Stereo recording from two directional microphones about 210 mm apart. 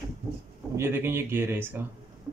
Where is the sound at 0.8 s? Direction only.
10° right (ahead or behind).